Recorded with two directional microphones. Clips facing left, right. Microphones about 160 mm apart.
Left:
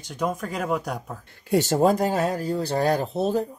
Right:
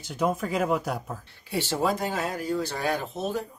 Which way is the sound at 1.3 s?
45° left (ahead or behind).